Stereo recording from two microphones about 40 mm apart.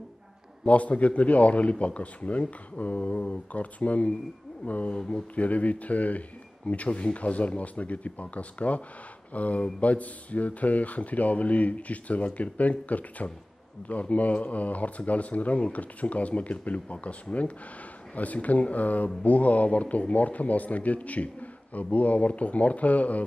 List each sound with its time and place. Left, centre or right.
0.7 s a man's voice: left